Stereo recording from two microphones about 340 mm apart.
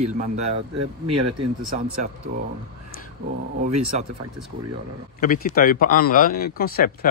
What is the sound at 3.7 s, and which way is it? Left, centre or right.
Speech, right.